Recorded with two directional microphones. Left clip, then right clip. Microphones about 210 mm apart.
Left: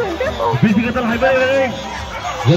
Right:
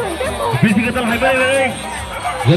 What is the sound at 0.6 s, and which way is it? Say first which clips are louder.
A man's voice: right 1 dB; 30° left (ahead or behind).